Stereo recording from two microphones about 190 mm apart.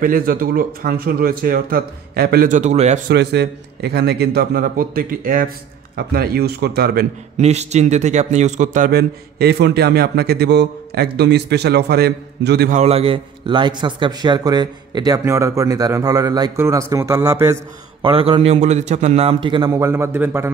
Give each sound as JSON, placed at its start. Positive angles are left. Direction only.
{"t": 0.0, "sound": "speech", "side_deg": -50}
{"t": 3.1, "sound": "a man's voice", "side_deg": -60}
{"t": 7.3, "sound": "a man's voice", "side_deg": -35}
{"t": 12.7, "sound": "a man's voice", "side_deg": -35}